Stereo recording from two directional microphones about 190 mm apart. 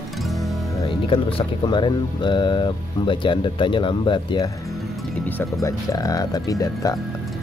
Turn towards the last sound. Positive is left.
turn(degrees=20)  # may be behind; listen again after turning